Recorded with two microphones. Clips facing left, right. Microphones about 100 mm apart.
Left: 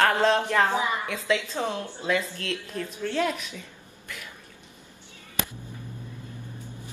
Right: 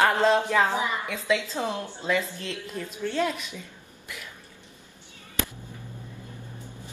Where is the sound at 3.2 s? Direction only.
Centre (ahead or behind).